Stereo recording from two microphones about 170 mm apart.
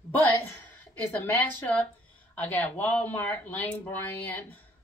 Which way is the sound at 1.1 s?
10° left (ahead or behind).